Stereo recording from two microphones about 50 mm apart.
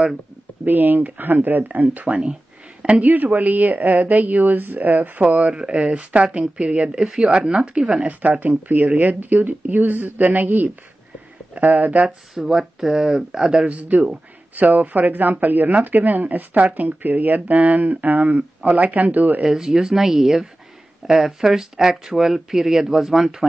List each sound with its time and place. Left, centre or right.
0.7 s speech: right
3.1 s speech: right
5.5 s speech: centre
8.1 s speech: right
12.4 s speech: centre
13.7 s speech: right
19.4 s speech: centre